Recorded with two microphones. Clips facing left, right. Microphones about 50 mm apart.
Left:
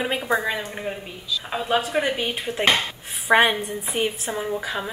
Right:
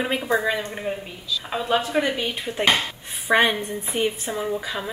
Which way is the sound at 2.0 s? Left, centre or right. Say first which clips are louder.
Even; centre.